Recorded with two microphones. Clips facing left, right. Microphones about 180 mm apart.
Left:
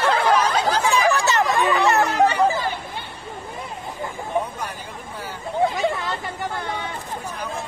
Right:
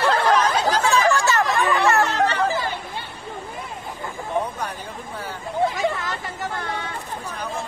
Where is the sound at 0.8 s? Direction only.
15° left (ahead or behind).